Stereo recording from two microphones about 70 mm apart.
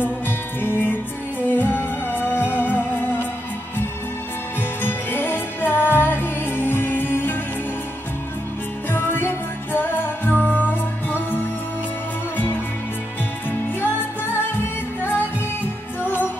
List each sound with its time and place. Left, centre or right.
0.6 s music: left
4.8 s music: left
8.9 s music: left
13.5 s music: left
15.0 s music: left